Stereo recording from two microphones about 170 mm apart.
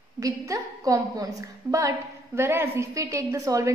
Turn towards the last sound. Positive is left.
turn(degrees=-20)  # may be behind; listen again after turning